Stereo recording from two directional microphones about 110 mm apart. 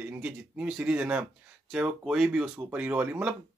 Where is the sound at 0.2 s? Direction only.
10° right (ahead or behind).